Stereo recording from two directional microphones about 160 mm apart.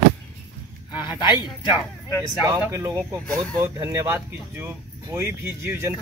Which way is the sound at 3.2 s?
5° left (ahead or behind).